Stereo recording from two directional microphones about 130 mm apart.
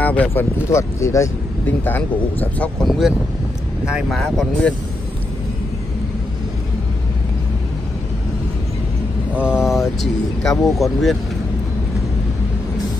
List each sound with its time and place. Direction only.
0.0 s speech: 10° left (ahead or behind)
2.9 s speech: centre (ahead or behind)
4.2 s speech: 5° left (ahead or behind)
9.3 s speech: 10° right (ahead or behind)